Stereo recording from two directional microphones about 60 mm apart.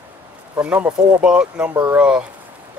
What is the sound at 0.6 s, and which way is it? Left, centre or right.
Speech, right.